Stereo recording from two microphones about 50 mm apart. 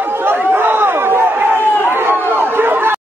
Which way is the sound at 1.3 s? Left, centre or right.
Right.